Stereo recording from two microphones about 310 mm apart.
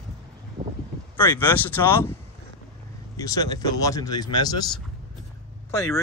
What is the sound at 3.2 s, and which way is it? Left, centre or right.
Speech, centre.